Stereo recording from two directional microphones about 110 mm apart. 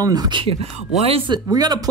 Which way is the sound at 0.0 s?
35° right (ahead or behind).